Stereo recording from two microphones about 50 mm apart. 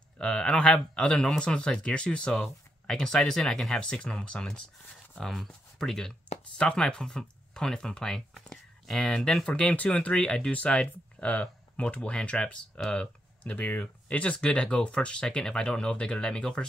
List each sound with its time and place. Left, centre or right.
0.2 s speech: centre
5.2 s speech: centre
9.5 s speech: left
13.4 s speech: left; by 16.6 s centre